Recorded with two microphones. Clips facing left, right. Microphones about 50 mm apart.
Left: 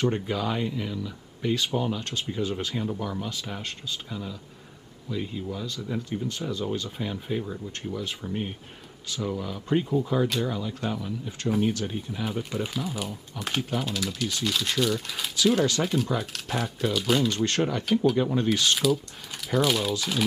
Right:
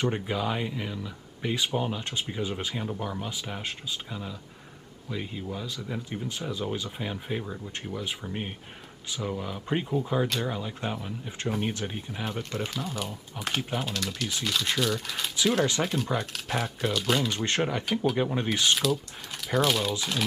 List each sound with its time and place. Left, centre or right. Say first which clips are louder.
0.0 s speech: left 2 dB; centre
11.4 s speech: left 5 dB; centre
12.3 s speech: left 1 dB; centre
17.5 s speech: left 1 dB; right
17.8 s speech: left 4 dB; centre
18.1 s speech: left 3 dB; centre
19.5 s speech: left 1 dB; centre